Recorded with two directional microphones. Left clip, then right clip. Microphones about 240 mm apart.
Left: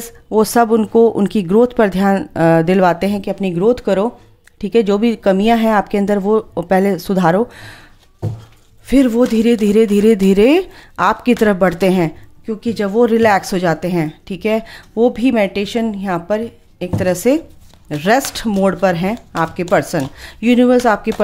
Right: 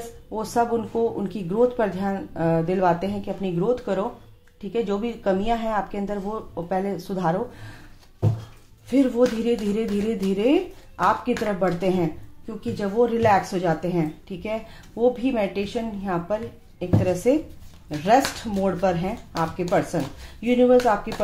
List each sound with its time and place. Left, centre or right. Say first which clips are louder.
0.3 s speech: left 11 dB; left
8.8 s speech: left 7 dB; left